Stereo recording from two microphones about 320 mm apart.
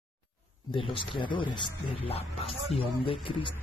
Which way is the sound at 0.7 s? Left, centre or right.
Centre.